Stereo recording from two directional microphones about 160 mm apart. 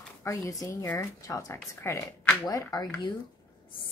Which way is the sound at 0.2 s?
20° left (ahead or behind).